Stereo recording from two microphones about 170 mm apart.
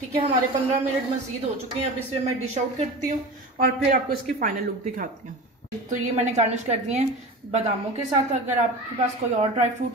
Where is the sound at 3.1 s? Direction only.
60° right (ahead or behind).